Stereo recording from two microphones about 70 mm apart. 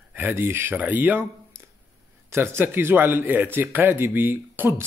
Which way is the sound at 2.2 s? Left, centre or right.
Right.